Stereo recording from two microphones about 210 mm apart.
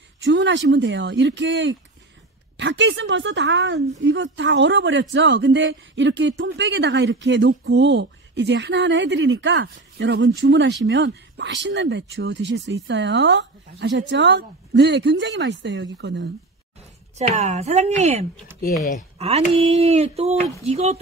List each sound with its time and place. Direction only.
0.2 s speech: 60° right (ahead or behind)
17.3 s a woman's voice: 30° right (ahead or behind)